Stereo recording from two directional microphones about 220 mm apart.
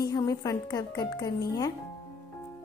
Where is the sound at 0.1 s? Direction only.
15° left (ahead or behind).